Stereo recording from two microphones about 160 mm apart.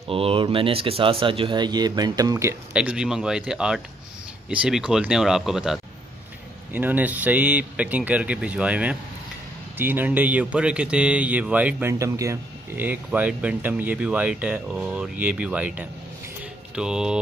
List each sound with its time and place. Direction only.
0.1 s speech: 35° right (ahead or behind); by 17.2 s 5° right (ahead or behind)